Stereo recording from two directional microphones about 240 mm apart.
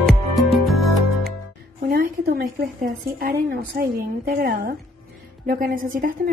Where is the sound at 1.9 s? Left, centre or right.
Right.